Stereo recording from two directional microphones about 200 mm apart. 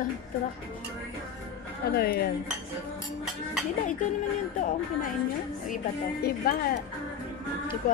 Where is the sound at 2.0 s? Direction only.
50° left (ahead or behind).